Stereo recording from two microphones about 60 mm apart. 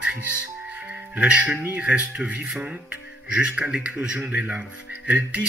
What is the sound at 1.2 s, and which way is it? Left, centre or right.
Speech, centre.